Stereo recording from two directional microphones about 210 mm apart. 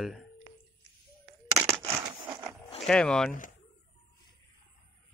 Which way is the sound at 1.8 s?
15° right (ahead or behind).